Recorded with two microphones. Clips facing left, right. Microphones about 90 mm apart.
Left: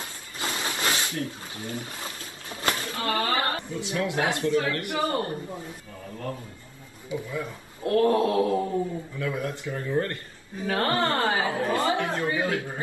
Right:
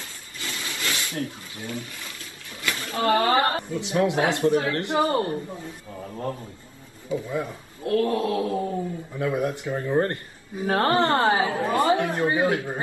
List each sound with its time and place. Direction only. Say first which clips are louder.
0.4 s hiss: left 4 dB; 35° left (ahead or behind)
1.6 s a sound: right 1 dB; 30° left (ahead or behind)
2.9 s a woman's voice: right 10 dB; 30° right (ahead or behind)
7.1 s a woman's voice: right 4 dB; 20° right (ahead or behind)
7.8 s mantra: left 2 dB; 35° left (ahead or behind)
9.2 s a woman's voice: right 6 dB; 20° right (ahead or behind)